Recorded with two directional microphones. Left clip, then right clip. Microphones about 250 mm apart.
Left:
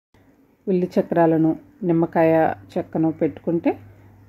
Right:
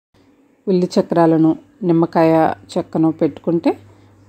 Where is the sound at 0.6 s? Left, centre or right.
Centre.